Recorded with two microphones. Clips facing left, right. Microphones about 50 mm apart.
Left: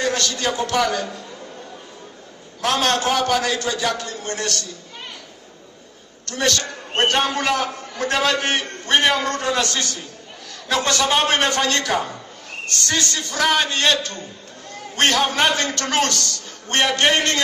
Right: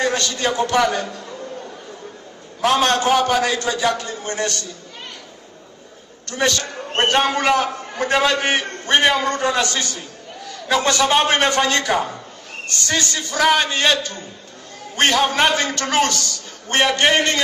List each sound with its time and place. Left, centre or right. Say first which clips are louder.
0.0 s a man's voice: right 1 dB; centre
2.6 s a man's voice: right 3 dB; centre
3.9 s a man's voice: right 2 dB; right
6.2 s a man's voice: right 1 dB; centre
7.0 s a man's voice: right 2 dB; centre